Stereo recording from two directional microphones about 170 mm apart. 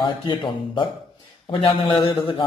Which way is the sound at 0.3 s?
30° left (ahead or behind).